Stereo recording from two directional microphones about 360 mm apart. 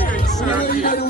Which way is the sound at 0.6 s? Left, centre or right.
Left.